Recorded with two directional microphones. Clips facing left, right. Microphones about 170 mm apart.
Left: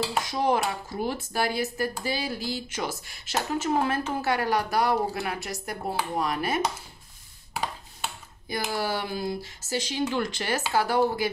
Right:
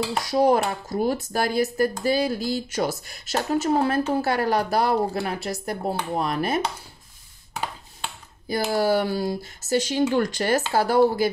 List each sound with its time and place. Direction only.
0.2 s speech: 40° right (ahead or behind)
8.5 s speech: 40° right (ahead or behind)
9.4 s speech: 45° right (ahead or behind)